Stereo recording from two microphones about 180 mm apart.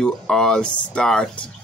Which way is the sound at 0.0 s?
5° left (ahead or behind).